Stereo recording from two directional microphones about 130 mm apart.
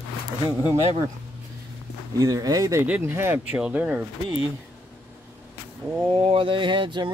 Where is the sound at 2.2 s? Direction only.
25° right (ahead or behind).